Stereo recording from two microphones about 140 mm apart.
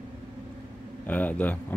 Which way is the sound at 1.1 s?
10° left (ahead or behind).